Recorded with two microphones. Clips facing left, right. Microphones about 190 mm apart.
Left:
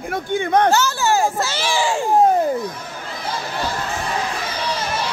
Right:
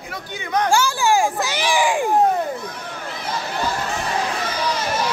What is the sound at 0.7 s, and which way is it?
A child's voice, 10° right (ahead or behind).